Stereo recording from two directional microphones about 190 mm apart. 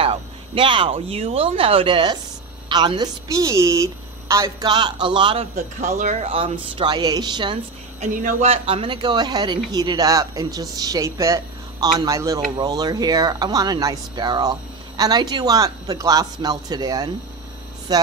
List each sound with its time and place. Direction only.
0.0 s speech: 25° right (ahead or behind)
8.0 s speech: 40° right (ahead or behind)
8.5 s speech: 30° right (ahead or behind)